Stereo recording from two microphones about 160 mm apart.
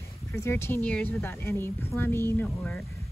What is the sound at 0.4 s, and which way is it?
Speech, 15° left (ahead or behind).